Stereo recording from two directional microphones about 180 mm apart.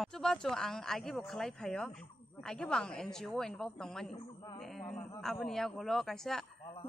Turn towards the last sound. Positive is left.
turn(degrees=0)  # may be behind; listen again after turning